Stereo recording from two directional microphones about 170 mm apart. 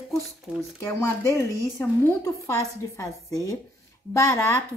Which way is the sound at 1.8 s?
15° left (ahead or behind).